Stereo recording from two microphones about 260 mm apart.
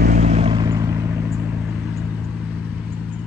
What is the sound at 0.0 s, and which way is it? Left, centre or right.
Vehicle, right.